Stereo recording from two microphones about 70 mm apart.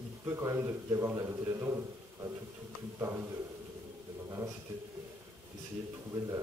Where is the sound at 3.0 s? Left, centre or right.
Right.